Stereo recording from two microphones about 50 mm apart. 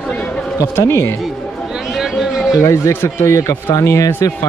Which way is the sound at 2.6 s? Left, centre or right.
Left.